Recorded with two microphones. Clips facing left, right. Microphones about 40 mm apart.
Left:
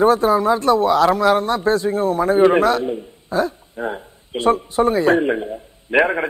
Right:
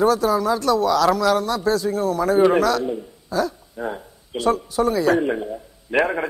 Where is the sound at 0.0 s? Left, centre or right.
Left.